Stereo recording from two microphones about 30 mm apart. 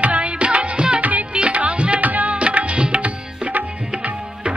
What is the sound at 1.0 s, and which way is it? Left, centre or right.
Music, right.